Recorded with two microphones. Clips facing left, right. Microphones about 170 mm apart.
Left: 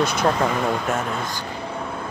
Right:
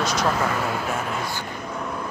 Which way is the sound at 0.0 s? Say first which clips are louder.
Left 3 dB; 55° left (ahead or behind).